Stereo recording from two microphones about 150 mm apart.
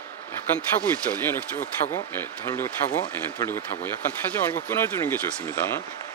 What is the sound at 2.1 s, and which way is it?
Speech, 15° left (ahead or behind).